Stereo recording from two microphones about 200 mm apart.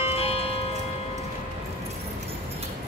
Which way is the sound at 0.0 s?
30° left (ahead or behind).